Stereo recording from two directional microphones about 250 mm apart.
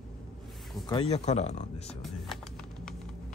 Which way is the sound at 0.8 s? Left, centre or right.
Left.